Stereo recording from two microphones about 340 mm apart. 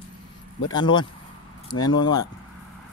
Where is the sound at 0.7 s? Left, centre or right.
Centre.